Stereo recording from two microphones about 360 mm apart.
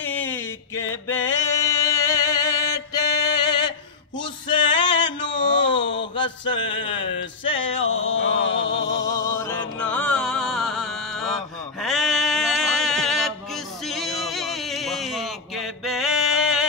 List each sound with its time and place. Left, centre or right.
0.0 s a sound: centre
6.1 s mantra: centre
7.4 s music: centre
7.7 s music: left
9.0 s music: centre
13.8 s a sound: centre